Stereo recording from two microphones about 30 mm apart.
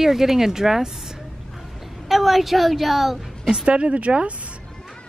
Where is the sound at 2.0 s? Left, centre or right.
Centre.